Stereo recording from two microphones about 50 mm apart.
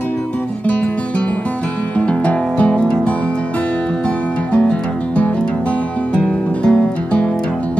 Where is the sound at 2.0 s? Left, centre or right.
Left.